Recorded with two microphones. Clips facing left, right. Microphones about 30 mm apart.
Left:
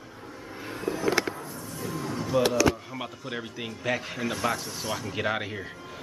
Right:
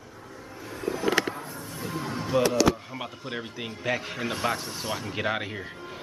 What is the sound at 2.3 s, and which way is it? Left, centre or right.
Speech, centre.